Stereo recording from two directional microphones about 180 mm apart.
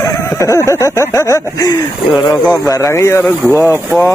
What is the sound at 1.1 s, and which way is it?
Speech, 15° left (ahead or behind).